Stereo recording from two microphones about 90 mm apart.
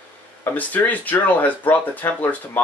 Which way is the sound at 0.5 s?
20° left (ahead or behind).